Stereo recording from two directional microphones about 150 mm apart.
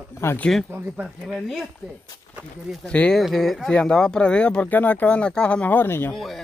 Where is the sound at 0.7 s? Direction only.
10° right (ahead or behind).